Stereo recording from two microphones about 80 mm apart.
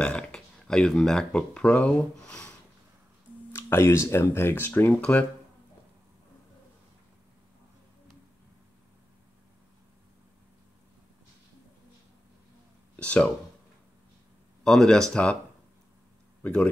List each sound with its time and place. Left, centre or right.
0.0 s speech: centre
3.5 s speech: left
12.9 s speech: centre
14.6 s speech: centre
16.4 s a man's voice: centre